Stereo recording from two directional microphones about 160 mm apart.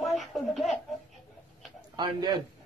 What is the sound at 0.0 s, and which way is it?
Baby laughter, centre (ahead or behind).